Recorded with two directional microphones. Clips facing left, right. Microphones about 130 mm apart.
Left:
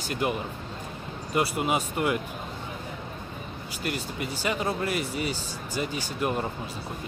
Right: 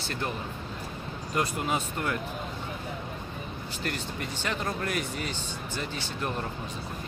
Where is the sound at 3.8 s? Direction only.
10° left (ahead or behind).